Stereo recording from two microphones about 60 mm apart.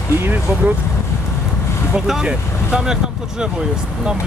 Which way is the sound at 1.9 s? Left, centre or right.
Centre.